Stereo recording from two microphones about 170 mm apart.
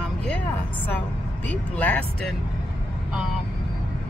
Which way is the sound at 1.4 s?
10° left (ahead or behind).